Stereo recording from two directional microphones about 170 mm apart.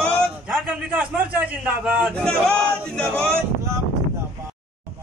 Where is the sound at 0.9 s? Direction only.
10° right (ahead or behind).